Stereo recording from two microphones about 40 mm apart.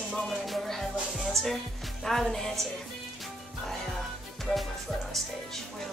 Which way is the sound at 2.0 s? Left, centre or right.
Centre.